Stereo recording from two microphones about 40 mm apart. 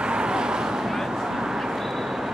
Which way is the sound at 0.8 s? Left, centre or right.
Centre.